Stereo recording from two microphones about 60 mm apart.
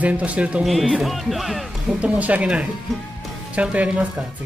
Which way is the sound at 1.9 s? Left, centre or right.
Centre.